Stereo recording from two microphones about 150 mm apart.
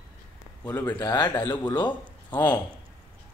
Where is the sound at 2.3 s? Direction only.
10° left (ahead or behind).